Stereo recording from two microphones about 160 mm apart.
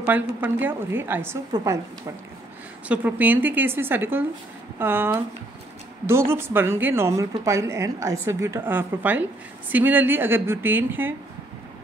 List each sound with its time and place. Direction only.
0.0 s speech: 10° right (ahead or behind)
2.9 s speech: 10° right (ahead or behind)